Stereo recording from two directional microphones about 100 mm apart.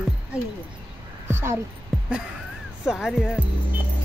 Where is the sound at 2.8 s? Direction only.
5° right (ahead or behind).